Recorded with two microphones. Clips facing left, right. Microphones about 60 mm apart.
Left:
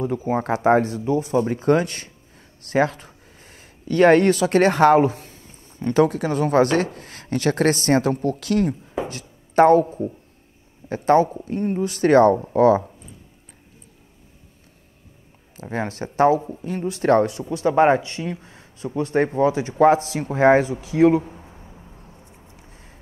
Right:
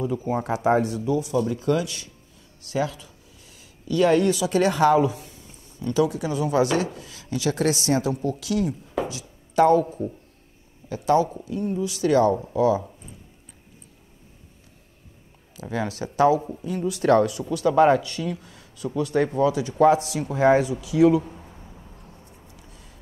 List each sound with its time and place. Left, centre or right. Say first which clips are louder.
0.3 s speech: left 4 dB; left
9.0 s music: right 1 dB; left
9.6 s speech: left 4 dB; left
15.7 s speech: left 1 dB; left
21.2 s a sound: even; centre
22.5 s a sound: left 1 dB; left